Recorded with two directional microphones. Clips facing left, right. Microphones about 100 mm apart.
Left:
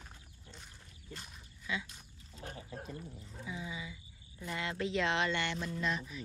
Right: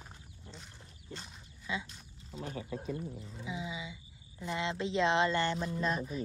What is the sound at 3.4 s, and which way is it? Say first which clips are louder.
Speech: right 2 dB; 15° right (ahead or behind).